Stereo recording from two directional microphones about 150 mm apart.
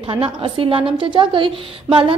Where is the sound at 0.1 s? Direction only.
35° right (ahead or behind).